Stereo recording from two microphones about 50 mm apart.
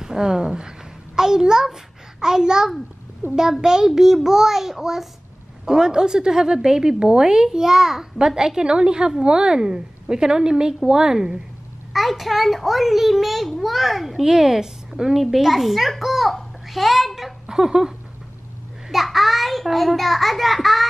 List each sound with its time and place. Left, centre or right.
0.0 s a child's voice: centre
3.2 s a child's voice: right
3.6 s a child's voice: centre
11.9 s a child's voice: centre